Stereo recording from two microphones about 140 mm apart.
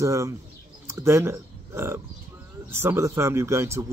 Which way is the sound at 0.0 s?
20° right (ahead or behind).